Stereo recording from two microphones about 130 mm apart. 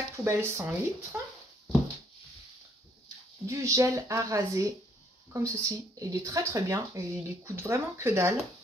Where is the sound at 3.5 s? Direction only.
25° right (ahead or behind).